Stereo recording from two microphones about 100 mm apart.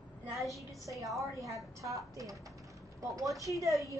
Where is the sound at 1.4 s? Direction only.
30° right (ahead or behind).